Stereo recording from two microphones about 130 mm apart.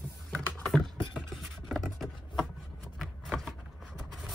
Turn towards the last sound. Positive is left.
turn(degrees=0)  # may be behind; listen again after turning